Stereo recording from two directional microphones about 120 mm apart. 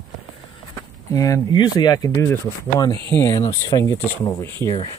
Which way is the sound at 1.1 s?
30° left (ahead or behind).